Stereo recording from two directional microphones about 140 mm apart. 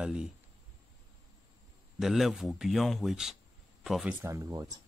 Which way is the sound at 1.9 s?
Centre (ahead or behind).